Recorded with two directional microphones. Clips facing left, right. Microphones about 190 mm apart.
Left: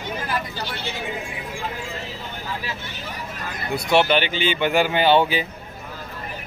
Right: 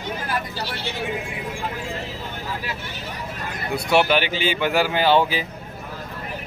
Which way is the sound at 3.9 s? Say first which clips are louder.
Even; 5° right (ahead or behind).